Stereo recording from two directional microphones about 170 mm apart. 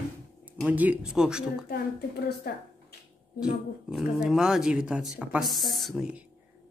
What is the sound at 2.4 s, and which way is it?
Speech, 65° left (ahead or behind).